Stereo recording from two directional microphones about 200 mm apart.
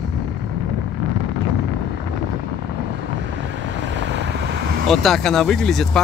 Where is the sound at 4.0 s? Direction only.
65° right (ahead or behind).